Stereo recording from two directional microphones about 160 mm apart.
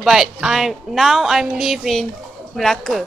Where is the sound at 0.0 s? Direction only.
Centre (ahead or behind).